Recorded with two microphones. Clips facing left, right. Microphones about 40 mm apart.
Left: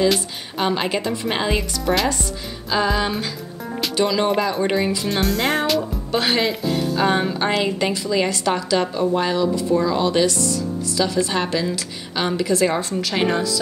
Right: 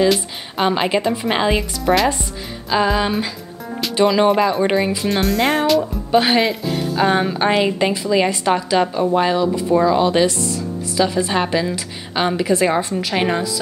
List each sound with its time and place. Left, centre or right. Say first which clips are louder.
0.6 s speech: right 4 dB; centre
5.8 s speech: right 6 dB; centre
9.7 s a woman's voice: right 6 dB; right
9.9 s a woman's voice: right 3 dB; centre